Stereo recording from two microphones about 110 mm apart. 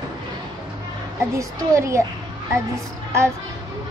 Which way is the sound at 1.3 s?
25° right (ahead or behind).